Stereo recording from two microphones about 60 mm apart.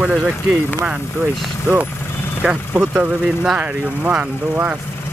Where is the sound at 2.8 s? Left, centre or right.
Centre.